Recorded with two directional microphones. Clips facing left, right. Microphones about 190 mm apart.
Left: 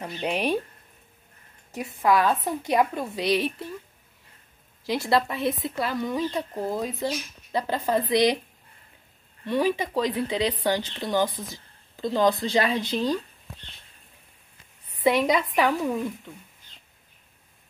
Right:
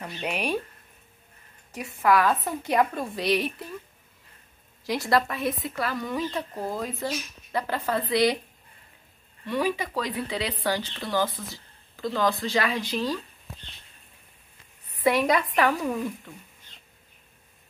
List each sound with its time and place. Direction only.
0.0 s speech: 25° left (ahead or behind)
2.0 s speech: 20° left (ahead or behind)
4.8 s speech: 25° left (ahead or behind)
9.5 s speech: 25° left (ahead or behind)
15.0 s speech: 15° left (ahead or behind)